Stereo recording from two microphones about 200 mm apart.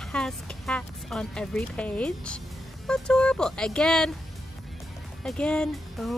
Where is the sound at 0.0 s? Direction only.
5° left (ahead or behind).